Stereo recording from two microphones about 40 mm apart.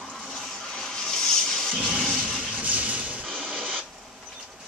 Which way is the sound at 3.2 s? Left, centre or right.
Centre.